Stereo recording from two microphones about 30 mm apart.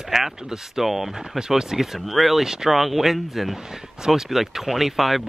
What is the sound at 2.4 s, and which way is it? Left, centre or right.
Speech, right.